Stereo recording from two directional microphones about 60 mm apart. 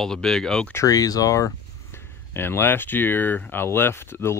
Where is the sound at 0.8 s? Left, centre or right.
Left.